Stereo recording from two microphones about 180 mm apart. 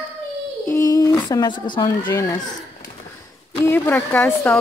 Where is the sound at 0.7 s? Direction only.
20° left (ahead or behind).